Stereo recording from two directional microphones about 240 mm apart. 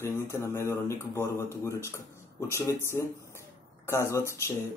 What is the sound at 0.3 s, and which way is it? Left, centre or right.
Speech, centre.